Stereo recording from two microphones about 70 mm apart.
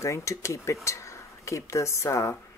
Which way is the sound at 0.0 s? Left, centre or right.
Left.